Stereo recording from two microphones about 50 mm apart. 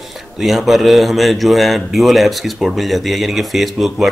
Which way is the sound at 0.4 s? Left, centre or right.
Centre.